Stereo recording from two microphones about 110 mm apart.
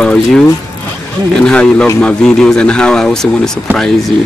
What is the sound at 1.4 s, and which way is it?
Speech, 10° left (ahead or behind).